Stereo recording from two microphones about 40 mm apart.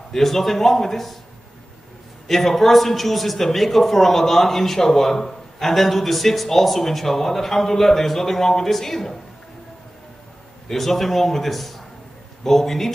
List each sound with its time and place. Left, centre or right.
0.1 s a man's voice: centre
2.2 s a man's voice: centre
10.7 s a man's voice: centre